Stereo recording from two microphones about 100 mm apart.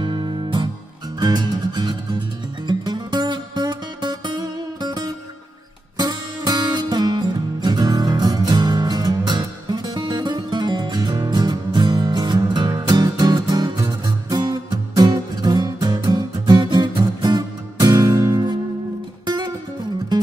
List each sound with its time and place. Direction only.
0.0 s music: 50° right (ahead or behind)